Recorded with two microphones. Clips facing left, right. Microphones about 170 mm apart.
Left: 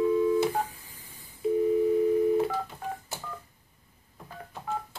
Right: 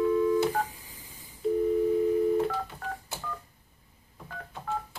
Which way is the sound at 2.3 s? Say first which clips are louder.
Left 1 dB; 5° left (ahead or behind).